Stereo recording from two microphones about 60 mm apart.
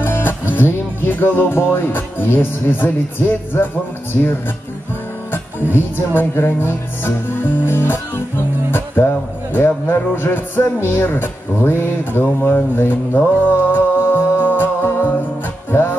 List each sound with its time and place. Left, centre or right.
0.0 s music: left
0.6 s speech: left
6.1 s speech: left
15.7 s music: left